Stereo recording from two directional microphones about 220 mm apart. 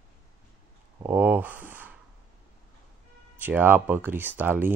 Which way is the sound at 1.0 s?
10° right (ahead or behind).